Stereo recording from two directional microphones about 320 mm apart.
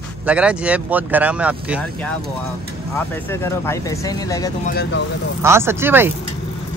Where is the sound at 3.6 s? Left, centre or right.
Centre.